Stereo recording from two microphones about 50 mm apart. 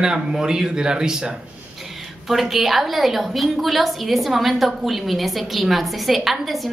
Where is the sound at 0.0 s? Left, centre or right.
Centre.